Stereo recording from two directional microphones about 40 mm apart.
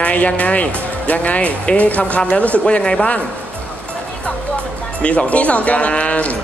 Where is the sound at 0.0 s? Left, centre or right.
Left.